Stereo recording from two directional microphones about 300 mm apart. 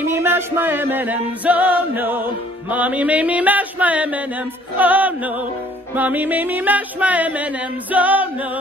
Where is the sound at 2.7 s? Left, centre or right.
Centre.